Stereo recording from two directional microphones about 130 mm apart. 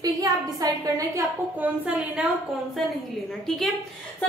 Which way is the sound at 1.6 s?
10° right (ahead or behind).